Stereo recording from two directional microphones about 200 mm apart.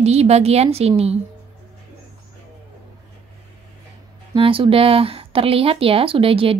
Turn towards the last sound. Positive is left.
turn(degrees=-30)  # may be behind; listen again after turning